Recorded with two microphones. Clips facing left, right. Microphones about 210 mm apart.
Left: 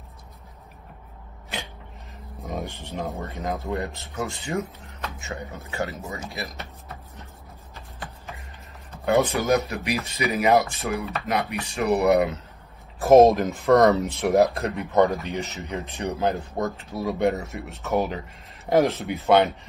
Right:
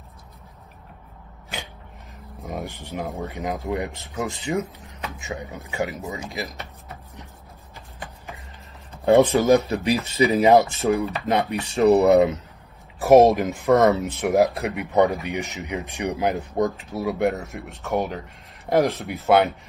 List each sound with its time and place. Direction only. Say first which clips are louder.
2.4 s a sound: even; 5° right (ahead or behind)
3.3 s speech: right 2 dB; 15° right (ahead or behind)
9.0 s speech: right 6 dB; 30° right (ahead or behind)
13.4 s speech: right 1 dB; 10° right (ahead or behind)
13.7 s speech: even; centre (ahead or behind)
14.6 s speech: right 1 dB; 10° right (ahead or behind)